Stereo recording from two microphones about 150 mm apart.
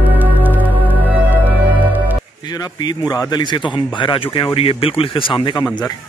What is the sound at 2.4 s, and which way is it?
A man's voice, 25° left (ahead or behind).